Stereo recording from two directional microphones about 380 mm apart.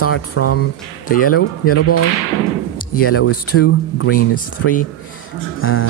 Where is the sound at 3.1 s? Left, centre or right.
Left.